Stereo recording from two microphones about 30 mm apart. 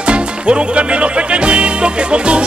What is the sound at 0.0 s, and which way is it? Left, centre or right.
Music, right.